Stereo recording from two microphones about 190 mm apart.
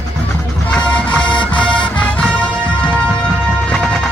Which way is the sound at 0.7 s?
5° left (ahead or behind).